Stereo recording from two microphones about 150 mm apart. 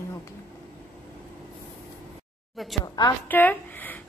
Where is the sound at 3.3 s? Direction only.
10° left (ahead or behind).